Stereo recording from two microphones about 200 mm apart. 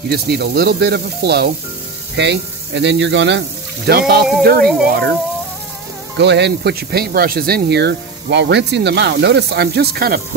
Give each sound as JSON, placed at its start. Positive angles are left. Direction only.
{"t": 0.1, "sound": "speech", "side_deg": -50}
{"t": 4.6, "sound": "speech", "side_deg": 5}
{"t": 4.8, "sound": "speech", "side_deg": -50}
{"t": 6.1, "sound": "speech", "side_deg": -60}